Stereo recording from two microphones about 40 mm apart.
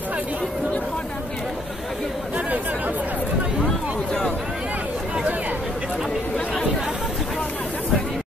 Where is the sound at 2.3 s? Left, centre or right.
Right.